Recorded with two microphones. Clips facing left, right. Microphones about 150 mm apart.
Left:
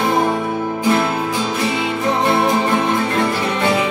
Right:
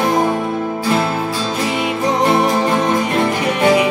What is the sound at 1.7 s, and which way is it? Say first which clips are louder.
Music: right 2 dB; 20° right (ahead or behind).